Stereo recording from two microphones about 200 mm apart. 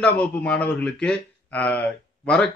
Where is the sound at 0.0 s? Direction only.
5° left (ahead or behind).